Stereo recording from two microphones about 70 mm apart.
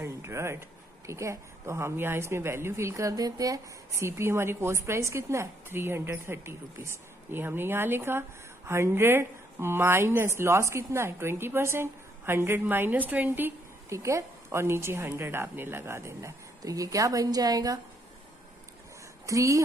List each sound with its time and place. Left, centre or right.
0.0 s speech: right
13.8 s a woman's voice: right
19.2 s a woman's voice: right